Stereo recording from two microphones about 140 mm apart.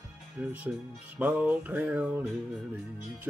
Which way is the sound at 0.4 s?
10° right (ahead or behind).